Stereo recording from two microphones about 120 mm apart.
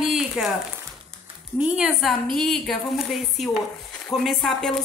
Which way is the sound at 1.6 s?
5° right (ahead or behind).